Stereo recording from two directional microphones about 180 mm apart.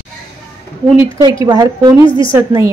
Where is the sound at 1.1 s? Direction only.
20° right (ahead or behind).